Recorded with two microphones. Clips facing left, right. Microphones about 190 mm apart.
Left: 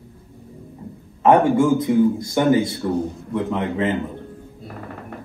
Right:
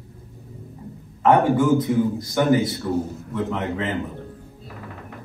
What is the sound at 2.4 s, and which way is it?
A man's voice, 20° left (ahead or behind).